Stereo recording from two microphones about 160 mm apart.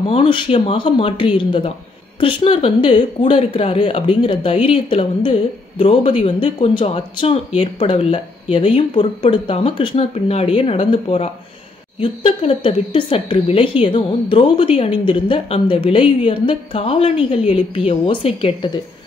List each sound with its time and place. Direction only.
0.0 s a woman's voice: 35° left (ahead or behind)